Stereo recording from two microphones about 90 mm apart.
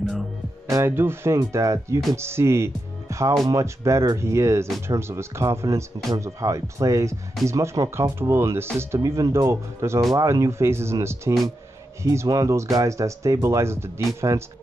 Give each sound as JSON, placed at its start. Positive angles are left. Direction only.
{"t": 0.7, "sound": "speech", "side_deg": -30}